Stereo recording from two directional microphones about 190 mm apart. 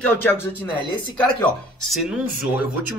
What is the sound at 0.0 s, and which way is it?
Speech, 10° left (ahead or behind).